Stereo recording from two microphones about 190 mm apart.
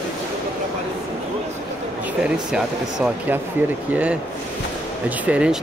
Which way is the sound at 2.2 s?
5° right (ahead or behind).